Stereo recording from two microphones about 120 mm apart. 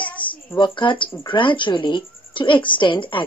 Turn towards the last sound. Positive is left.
turn(degrees=45)  # may be behind; listen again after turning